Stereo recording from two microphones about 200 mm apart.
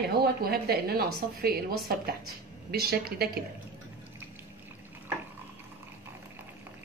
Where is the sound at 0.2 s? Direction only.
50° right (ahead or behind).